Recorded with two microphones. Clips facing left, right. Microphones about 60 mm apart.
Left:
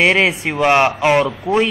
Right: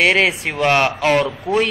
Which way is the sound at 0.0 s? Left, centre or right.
Centre.